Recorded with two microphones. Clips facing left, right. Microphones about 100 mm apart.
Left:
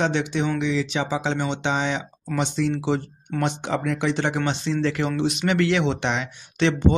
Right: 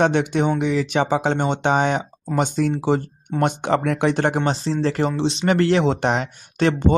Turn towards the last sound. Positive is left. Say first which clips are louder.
# right 2 dB
turn(degrees=-45)  # may be behind; listen again after turning